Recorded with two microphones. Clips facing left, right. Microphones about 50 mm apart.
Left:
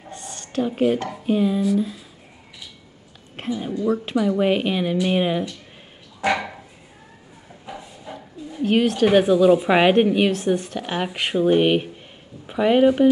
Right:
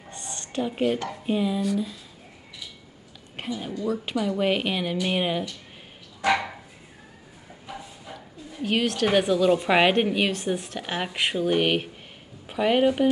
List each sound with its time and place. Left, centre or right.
0.1 s a sound: centre
0.6 s speech: centre
3.3 s a woman's voice: centre
3.7 s a woman's voice: left
4.0 s speech: centre
8.5 s speech: centre
12.4 s speech: centre